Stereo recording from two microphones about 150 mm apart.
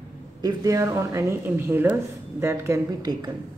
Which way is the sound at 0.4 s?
25° right (ahead or behind).